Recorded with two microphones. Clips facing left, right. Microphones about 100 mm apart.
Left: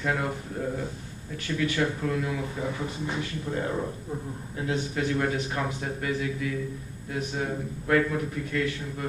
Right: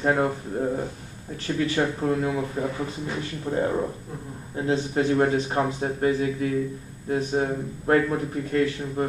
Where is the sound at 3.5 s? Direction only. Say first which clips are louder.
Right 6 dB; 30° right (ahead or behind).